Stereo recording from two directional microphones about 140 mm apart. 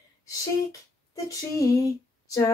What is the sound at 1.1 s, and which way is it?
Speech, 25° left (ahead or behind).